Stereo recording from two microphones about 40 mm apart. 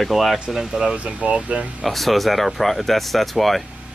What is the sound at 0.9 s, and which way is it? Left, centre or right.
Speech, right.